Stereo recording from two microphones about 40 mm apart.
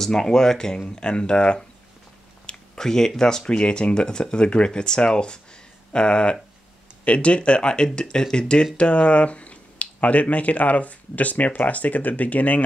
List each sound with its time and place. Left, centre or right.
0.0 s speech: centre
2.4 s a sound: centre
3.2 s speech: centre; by 12.6 s left